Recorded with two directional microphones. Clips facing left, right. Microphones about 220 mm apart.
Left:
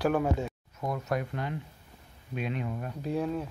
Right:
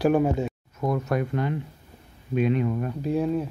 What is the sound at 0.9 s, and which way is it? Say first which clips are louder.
Speech: right 6 dB; 70° right (ahead or behind).